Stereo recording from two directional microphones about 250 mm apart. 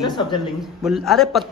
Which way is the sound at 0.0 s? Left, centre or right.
Centre.